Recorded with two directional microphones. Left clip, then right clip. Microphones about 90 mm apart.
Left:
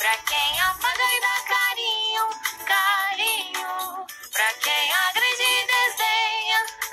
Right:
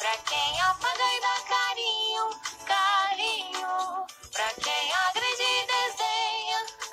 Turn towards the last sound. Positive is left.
turn(degrees=-45)  # may be behind; listen again after turning